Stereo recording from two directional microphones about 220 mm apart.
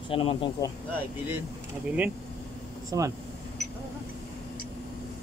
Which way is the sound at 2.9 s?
15° right (ahead or behind).